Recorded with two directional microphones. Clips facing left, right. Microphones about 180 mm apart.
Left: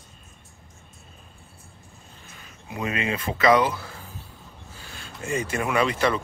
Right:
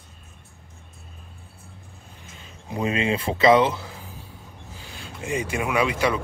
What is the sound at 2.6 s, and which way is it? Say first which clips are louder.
Speech: right 4 dB; 30° right (ahead or behind).